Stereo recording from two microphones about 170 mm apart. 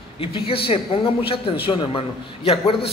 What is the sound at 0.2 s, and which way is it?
A man's voice, 35° left (ahead or behind).